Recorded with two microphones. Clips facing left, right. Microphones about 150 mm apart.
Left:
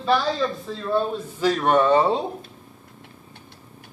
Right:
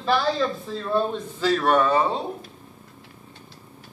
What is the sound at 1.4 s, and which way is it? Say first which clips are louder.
Speech: left 1 dB; 15° left (ahead or behind).